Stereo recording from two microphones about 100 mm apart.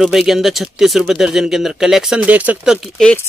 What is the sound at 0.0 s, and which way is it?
Speech, 5° right (ahead or behind).